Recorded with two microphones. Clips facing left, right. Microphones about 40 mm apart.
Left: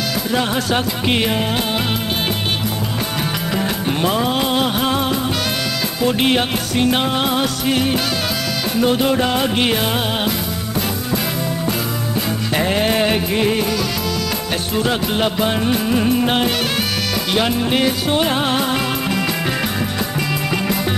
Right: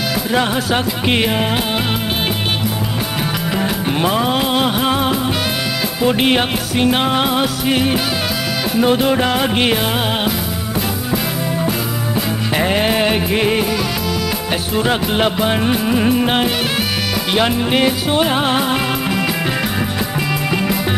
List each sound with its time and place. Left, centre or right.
0.3 s music: centre
3.5 s music: centre
12.5 s music: centre
14.8 s music: centre